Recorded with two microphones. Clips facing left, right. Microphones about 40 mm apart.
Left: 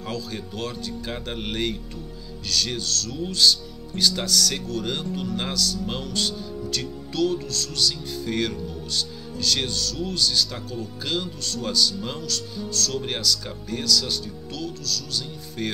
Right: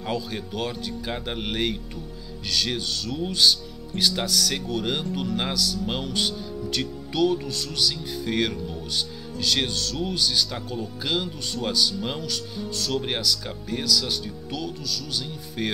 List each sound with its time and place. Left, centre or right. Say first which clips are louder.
0.0 s speech: right 2 dB; centre